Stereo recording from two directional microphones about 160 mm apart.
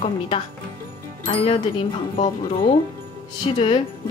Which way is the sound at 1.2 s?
35° left (ahead or behind).